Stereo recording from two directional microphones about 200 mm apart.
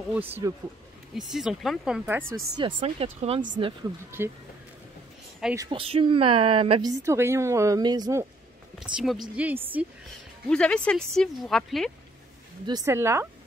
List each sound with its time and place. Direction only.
0.1 s a woman's voice: 10° right (ahead or behind)
2.5 s a woman's voice: 25° right (ahead or behind)
4.2 s a woman's voice: 10° right (ahead or behind)
5.6 s a woman's voice: 25° right (ahead or behind)
8.7 s speech: 5° right (ahead or behind)
10.5 s speech: 5° left (ahead or behind)
12.6 s a woman's voice: 15° right (ahead or behind)